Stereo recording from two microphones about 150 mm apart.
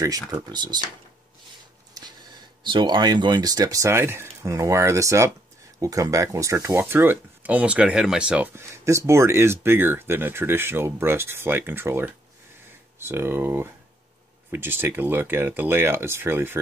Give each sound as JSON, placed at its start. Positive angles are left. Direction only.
{"t": 0.3, "sound": "speech", "side_deg": -30}
{"t": 2.6, "sound": "speech", "side_deg": -30}
{"t": 8.8, "sound": "speech", "side_deg": -20}